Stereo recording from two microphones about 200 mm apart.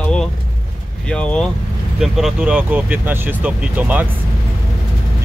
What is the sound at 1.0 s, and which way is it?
Speech, 5° left (ahead or behind).